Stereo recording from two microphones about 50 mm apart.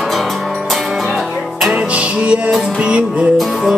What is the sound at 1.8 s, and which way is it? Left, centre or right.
Music, right.